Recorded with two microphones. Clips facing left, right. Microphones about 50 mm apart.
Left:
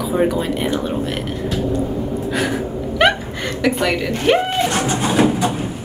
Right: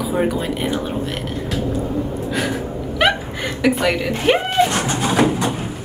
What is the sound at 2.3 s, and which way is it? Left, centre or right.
Gasp, centre.